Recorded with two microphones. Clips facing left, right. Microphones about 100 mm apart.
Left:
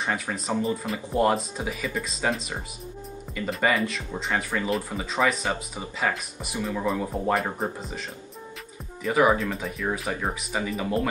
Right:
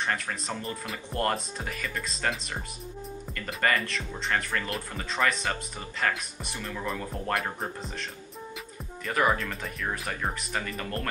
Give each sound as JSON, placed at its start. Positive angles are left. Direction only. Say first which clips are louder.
{"t": 0.0, "sound": "speech", "louder": "left 2 dB", "side_deg": 5}